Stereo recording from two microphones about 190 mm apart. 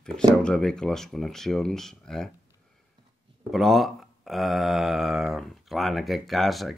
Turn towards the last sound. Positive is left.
turn(degrees=0)  # may be behind; listen again after turning